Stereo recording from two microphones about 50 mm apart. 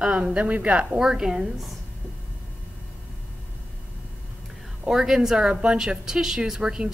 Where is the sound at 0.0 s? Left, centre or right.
Centre.